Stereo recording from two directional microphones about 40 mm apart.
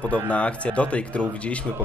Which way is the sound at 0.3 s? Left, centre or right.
Left.